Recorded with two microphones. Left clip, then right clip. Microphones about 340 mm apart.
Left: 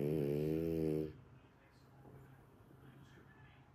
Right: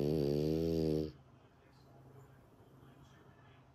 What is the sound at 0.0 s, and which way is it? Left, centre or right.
Mantra, right.